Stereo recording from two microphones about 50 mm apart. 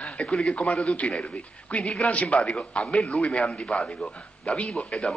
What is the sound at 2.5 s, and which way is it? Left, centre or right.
A man's voice, centre.